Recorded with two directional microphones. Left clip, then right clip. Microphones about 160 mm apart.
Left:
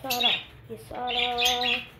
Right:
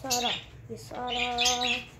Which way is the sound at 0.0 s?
Centre (ahead or behind).